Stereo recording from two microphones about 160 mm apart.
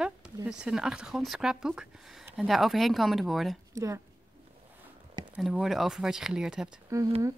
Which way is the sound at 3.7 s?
20° right (ahead or behind).